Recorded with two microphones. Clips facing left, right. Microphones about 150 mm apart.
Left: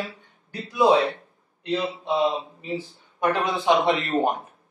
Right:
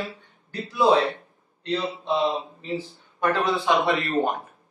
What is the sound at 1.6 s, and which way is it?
Speech, 15° left (ahead or behind).